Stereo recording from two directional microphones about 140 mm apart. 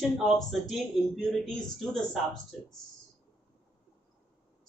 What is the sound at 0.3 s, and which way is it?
Speech, centre (ahead or behind).